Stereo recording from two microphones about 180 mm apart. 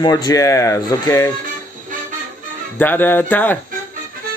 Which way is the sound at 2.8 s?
10° left (ahead or behind).